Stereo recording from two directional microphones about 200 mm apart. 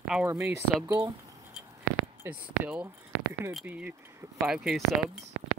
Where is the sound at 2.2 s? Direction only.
5° right (ahead or behind).